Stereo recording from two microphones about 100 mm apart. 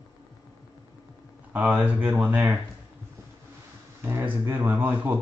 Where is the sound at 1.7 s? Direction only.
15° right (ahead or behind).